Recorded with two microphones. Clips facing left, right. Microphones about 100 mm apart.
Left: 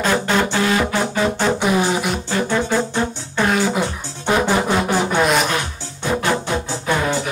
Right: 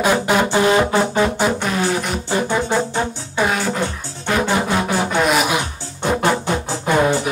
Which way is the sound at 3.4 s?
Centre (ahead or behind).